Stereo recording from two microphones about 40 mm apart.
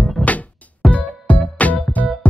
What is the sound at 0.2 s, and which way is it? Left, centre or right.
Music, left.